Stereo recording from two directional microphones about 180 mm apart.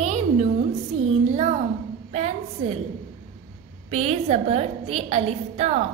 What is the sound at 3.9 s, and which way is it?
A woman's voice, 35° right (ahead or behind).